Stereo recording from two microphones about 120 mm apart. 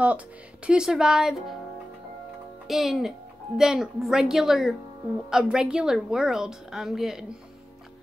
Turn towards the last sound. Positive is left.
turn(degrees=-5)  # may be behind; listen again after turning